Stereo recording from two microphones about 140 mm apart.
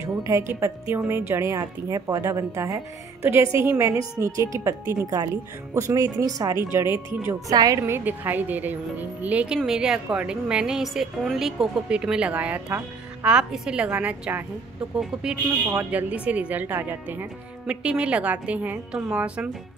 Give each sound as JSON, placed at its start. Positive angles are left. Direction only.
{"t": 0.0, "sound": "a woman's voice", "side_deg": -20}